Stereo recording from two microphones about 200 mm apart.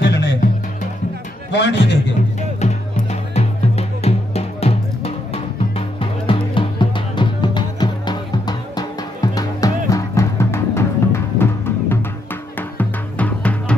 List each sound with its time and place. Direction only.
0.0 s music: 60° left (ahead or behind)
1.5 s a man's voice: 60° left (ahead or behind)
2.6 s music: 35° left (ahead or behind); by 13.7 s 5° left (ahead or behind)